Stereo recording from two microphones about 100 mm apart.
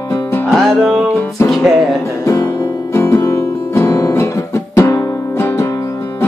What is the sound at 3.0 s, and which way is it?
Guitar, 25° left (ahead or behind).